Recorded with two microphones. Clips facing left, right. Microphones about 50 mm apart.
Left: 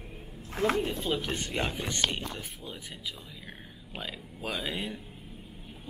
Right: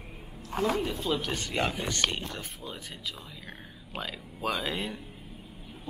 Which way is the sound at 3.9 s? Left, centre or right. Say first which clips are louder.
Right 2 dB; centre.